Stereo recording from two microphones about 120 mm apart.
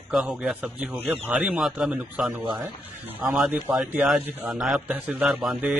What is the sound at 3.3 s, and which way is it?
A man's voice, 5° right (ahead or behind).